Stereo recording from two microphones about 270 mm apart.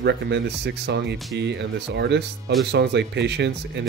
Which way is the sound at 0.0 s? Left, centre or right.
Right.